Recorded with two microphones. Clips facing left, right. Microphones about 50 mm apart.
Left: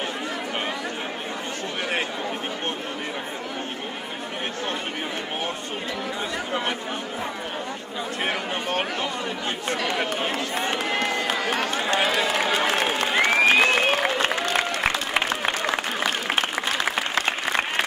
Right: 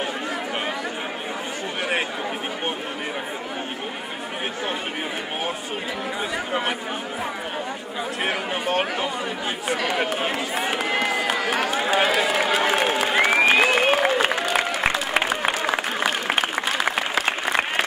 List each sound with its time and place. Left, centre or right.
8.3 s chatter: centre
9.7 s run: centre